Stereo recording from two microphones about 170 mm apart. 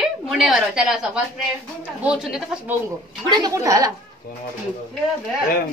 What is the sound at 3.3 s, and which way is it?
Speech, 20° right (ahead or behind).